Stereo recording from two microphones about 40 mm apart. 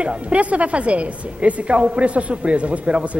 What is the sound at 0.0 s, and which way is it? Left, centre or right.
A woman's voice, right.